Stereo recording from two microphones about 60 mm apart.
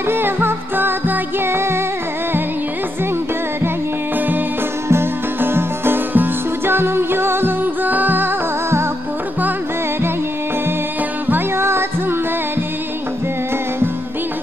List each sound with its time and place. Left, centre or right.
0.1 s music: right
4.8 s music: right
11.2 s music: right